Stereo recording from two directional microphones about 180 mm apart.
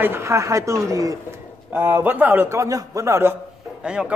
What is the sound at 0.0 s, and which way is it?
A man's voice, 15° right (ahead or behind).